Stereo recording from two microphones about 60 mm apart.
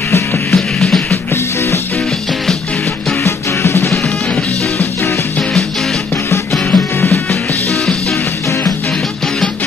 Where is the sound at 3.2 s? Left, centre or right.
Left.